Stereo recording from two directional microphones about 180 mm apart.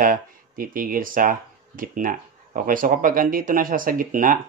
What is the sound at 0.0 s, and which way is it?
Speech, 50° right (ahead or behind).